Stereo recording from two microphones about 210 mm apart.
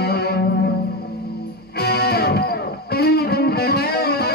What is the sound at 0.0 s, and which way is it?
Music, 50° left (ahead or behind).